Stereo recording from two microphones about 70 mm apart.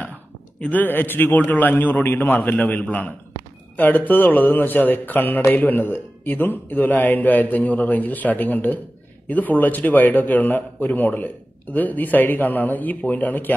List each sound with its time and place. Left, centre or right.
0.6 s speech: left